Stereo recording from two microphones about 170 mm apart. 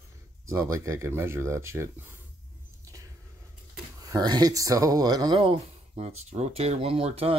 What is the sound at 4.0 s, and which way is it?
Speech, 20° right (ahead or behind).